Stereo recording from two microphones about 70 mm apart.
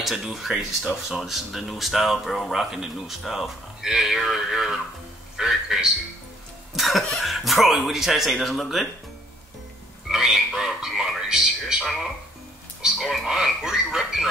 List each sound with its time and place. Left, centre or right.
0.0 s a man's voice: centre
10.0 s speech: centre